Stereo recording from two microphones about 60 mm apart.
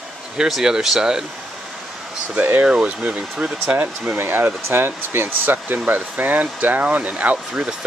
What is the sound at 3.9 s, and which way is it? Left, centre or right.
Speech, centre.